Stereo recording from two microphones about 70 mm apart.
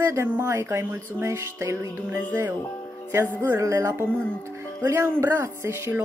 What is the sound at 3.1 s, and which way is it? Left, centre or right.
Speech, right.